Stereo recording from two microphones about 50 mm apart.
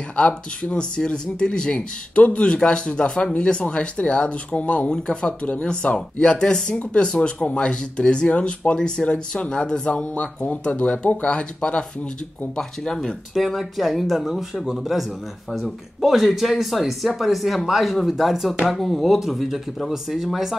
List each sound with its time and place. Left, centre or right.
0.7 s speech: centre
12.5 s speech: centre
13.3 s speech: centre